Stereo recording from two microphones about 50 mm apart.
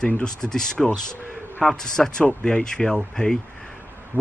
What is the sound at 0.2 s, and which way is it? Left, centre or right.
Speech, centre.